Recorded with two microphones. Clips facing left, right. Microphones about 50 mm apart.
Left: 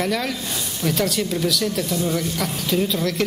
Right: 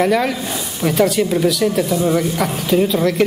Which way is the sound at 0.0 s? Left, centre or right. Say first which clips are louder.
Right 7 dB; centre.